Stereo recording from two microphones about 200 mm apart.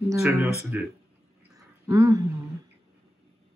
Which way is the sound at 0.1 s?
15° right (ahead or behind).